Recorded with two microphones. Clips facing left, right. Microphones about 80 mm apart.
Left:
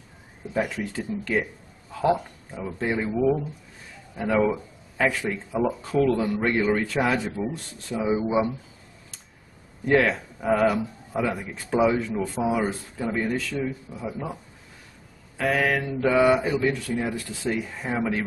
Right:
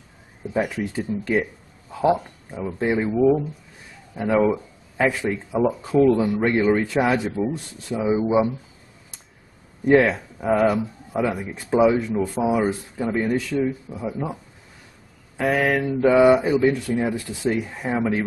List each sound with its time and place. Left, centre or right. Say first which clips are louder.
0.6 s speech: right 3 dB; centre
9.8 s speech: right 4 dB; centre
11.2 s speech: right 3 dB; centre
13.5 s speech: right 6 dB; centre